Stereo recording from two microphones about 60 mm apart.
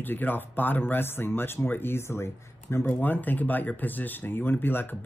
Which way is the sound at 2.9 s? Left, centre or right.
Left.